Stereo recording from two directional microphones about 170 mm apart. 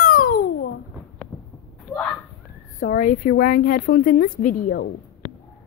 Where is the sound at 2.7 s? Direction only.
50° left (ahead or behind); by 4.9 s 70° left (ahead or behind).